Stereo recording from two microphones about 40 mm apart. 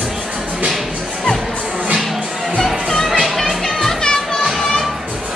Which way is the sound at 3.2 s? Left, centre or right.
Centre.